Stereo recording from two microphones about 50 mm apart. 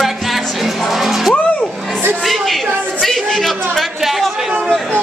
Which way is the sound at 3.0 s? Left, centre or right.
Centre.